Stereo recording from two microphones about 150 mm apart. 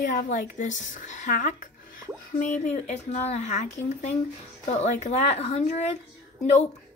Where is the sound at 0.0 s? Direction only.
75° left (ahead or behind); by 5.9 s 50° left (ahead or behind).